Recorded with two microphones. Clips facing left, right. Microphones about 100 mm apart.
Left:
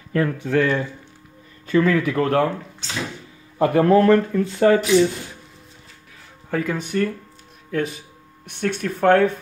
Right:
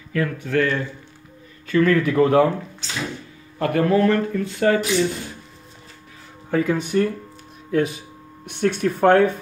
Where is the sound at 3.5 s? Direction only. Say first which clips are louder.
Left 3 dB; 20° left (ahead or behind).